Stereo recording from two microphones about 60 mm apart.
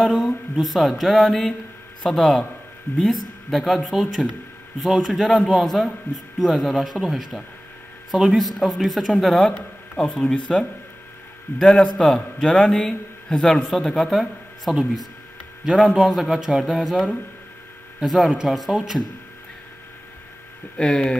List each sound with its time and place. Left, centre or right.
0.0 s mantra: centre
9.5 s a man's voice: centre
15.6 s mantra: centre
18.0 s mantra: centre
20.7 s a man's voice: centre